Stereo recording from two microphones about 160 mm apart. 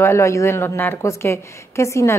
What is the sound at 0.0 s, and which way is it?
A woman's voice, 15° left (ahead or behind).